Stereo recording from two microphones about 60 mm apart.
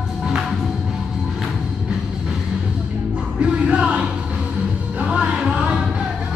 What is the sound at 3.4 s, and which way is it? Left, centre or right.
Music, centre.